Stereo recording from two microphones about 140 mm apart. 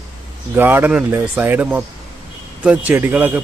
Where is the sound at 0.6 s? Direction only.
15° right (ahead or behind).